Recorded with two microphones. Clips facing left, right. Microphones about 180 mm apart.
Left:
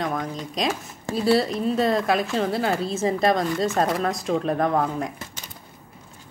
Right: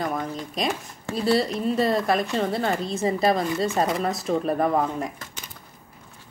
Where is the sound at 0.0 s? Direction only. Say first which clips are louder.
Left 1 dB; 5° right (ahead or behind).